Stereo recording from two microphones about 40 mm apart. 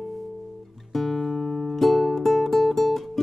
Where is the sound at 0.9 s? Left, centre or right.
Centre.